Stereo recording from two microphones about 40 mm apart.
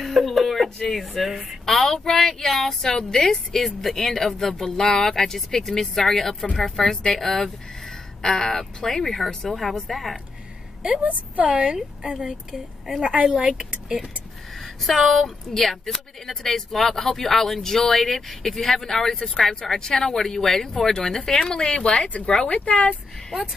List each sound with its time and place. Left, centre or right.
0.0 s a sound: centre
1.7 s a woman's voice: centre
11.1 s speech: right; by 12.9 s centre
13.0 s speech: right
14.6 s a woman's voice: centre; by 22.9 s left